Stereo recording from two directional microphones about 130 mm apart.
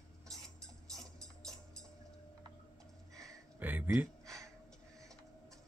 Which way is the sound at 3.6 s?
15° right (ahead or behind).